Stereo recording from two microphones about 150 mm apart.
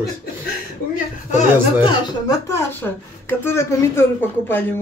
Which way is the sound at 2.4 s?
20° left (ahead or behind).